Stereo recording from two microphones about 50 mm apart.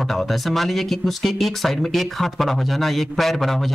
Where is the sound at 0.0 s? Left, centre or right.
Centre.